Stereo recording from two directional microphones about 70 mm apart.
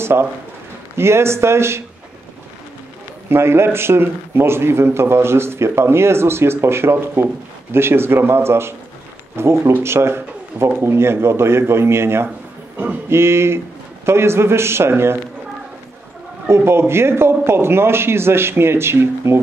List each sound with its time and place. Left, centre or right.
0.0 s a man's voice: right
3.3 s a man's voice: right
16.4 s a man's voice: right